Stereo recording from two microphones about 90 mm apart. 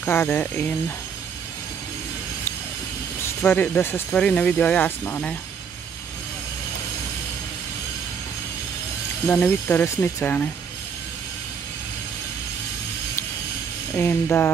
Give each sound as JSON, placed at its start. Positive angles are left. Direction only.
{"t": 0.0, "sound": "speech", "side_deg": 20}
{"t": 3.2, "sound": "speech", "side_deg": 25}
{"t": 9.2, "sound": "speech", "side_deg": 25}
{"t": 13.9, "sound": "speech", "side_deg": 20}